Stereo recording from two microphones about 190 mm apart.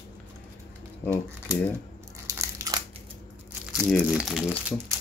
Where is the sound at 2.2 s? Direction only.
15° right (ahead or behind).